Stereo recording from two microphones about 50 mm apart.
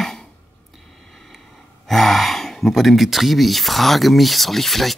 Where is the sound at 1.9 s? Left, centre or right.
Centre.